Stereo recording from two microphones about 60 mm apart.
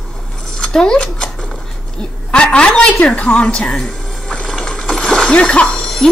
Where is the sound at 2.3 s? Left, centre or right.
Centre.